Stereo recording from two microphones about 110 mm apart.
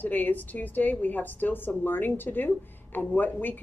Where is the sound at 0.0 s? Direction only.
15° left (ahead or behind).